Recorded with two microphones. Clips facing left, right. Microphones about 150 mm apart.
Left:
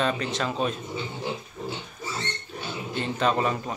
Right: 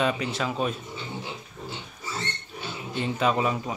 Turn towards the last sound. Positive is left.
turn(degrees=-5)  # may be behind; listen again after turning